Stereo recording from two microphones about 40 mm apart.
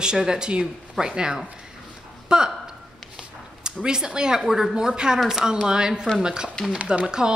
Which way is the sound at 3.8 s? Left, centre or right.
Centre.